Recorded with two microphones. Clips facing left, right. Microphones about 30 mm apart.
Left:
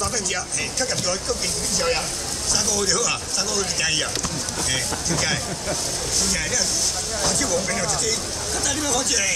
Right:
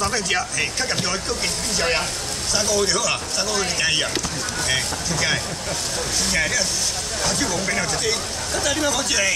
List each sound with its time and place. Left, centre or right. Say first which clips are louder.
0.0 s speech: right 4 dB; right